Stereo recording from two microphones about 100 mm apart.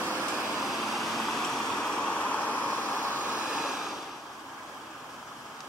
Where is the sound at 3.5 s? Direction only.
5° right (ahead or behind).